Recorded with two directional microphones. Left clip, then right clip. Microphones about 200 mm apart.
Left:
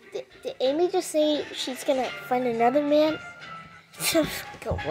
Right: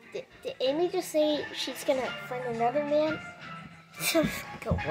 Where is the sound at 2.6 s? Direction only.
30° left (ahead or behind).